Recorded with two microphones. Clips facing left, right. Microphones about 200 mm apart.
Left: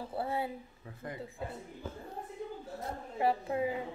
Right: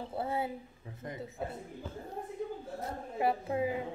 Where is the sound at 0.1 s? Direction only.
20° right (ahead or behind).